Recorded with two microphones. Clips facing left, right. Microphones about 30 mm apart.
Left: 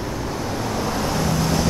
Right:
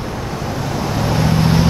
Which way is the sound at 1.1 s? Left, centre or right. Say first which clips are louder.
Right 8 dB; right.